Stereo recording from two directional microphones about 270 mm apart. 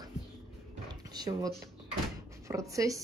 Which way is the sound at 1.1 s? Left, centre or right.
Centre.